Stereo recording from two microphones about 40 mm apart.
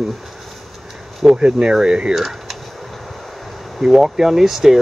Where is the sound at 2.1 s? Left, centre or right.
Centre.